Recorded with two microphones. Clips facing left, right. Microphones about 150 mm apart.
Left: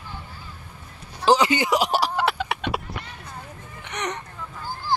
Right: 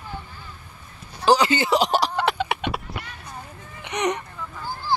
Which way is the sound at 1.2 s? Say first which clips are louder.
Even; 20° left (ahead or behind).